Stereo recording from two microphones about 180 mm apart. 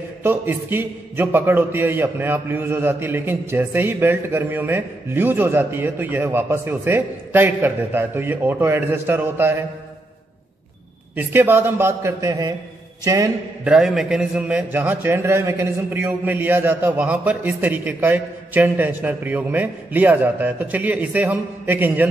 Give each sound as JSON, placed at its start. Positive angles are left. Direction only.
{"t": 0.2, "sound": "a man's voice", "side_deg": -10}
{"t": 11.1, "sound": "a man's voice", "side_deg": -10}
{"t": 13.7, "sound": "a man's voice", "side_deg": -5}